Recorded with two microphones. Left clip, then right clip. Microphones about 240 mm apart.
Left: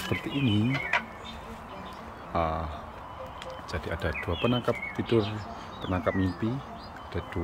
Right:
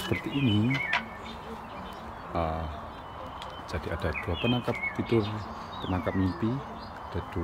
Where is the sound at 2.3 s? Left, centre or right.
Centre.